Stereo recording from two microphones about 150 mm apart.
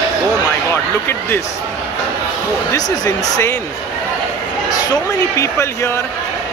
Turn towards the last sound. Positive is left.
turn(degrees=20)  # may be behind; listen again after turning